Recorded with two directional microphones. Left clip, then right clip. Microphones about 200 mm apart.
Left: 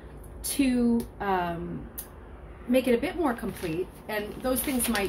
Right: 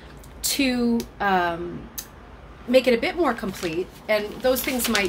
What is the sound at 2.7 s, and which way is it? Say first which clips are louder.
Speech: right 6 dB; 45° right (ahead or behind).